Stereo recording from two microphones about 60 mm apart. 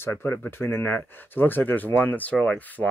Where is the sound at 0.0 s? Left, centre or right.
Left.